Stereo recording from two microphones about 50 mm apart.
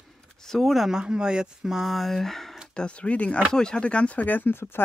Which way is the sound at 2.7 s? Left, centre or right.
Left.